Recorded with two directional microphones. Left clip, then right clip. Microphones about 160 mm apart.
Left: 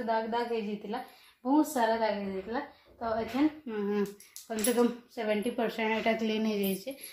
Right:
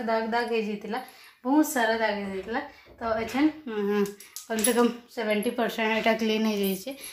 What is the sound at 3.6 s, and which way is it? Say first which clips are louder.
Speech: right 5 dB; 10° right (ahead or behind).